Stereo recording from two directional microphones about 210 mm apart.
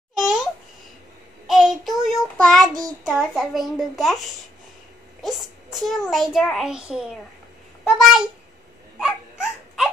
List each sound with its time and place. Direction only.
0.2 s babbling: centre (ahead or behind)
1.5 s child singing: centre (ahead or behind)
2.8 s a child's voice: centre (ahead or behind)
5.2 s a child's voice: centre (ahead or behind)
9.0 s dog: 5° right (ahead or behind)